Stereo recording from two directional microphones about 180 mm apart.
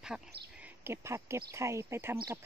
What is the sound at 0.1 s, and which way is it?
Speech, 5° right (ahead or behind).